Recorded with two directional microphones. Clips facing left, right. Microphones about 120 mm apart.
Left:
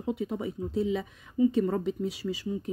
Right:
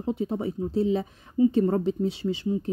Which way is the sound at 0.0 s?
30° right (ahead or behind).